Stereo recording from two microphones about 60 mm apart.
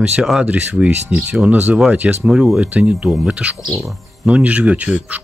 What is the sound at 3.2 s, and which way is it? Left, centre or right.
Speech, centre.